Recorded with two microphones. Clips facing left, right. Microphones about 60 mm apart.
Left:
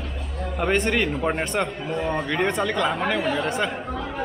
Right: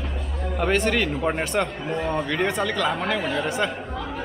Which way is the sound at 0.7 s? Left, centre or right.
Centre.